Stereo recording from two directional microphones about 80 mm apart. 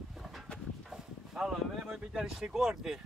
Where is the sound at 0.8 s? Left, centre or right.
Centre.